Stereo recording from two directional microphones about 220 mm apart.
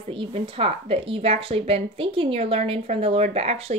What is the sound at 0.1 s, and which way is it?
A woman's voice, 25° right (ahead or behind).